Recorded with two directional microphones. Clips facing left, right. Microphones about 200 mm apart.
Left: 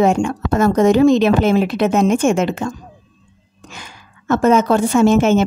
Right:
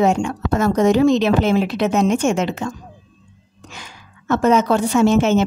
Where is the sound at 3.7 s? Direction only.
50° left (ahead or behind).